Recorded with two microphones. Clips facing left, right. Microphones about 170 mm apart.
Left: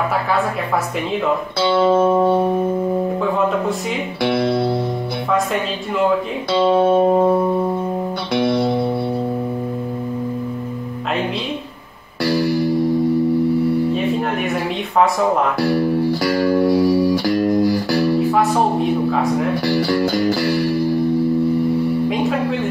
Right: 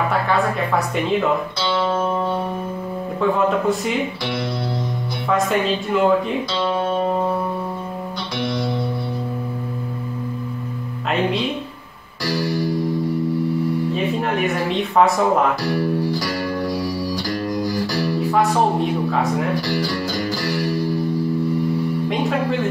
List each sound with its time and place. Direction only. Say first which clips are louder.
3.2 s speech: even; centre (ahead or behind)
4.2 s speech: left 8 dB; 60° left (ahead or behind)
5.3 s speech: right 2 dB; centre (ahead or behind)
8.4 s music: left 7 dB; 60° left (ahead or behind)
14.5 s speech: even; centre (ahead or behind)
15.6 s speech: left 4 dB; 60° left (ahead or behind)
16.6 s music: left 9 dB; 60° left (ahead or behind)
17.9 s music: left 2 dB; centre (ahead or behind)